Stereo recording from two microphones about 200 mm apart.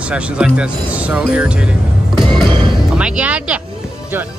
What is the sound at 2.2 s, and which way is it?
Music, 25° right (ahead or behind).